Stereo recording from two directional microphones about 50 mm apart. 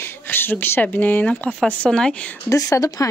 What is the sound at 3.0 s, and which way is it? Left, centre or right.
Speech, left.